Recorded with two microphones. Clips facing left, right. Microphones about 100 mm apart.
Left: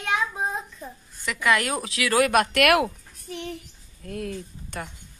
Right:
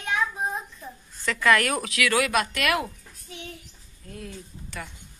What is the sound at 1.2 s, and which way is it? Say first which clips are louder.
A woman's voice: right 2 dB; 15° left (ahead or behind).